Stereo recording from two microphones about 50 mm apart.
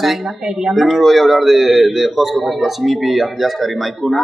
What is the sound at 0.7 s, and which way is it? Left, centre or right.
A man's voice, centre.